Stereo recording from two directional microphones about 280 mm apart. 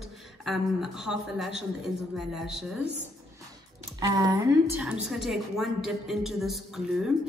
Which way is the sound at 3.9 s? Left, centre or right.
Centre.